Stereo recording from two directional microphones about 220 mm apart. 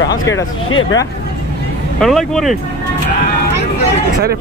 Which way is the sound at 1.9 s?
Centre (ahead or behind).